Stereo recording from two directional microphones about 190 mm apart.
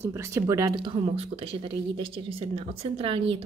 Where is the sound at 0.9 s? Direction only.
30° right (ahead or behind).